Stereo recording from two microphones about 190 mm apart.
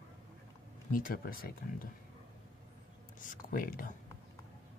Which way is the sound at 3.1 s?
45° left (ahead or behind).